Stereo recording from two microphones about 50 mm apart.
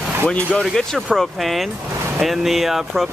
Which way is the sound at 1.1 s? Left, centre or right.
Centre.